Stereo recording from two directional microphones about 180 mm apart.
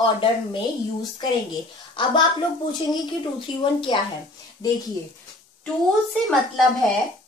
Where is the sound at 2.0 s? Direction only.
30° left (ahead or behind).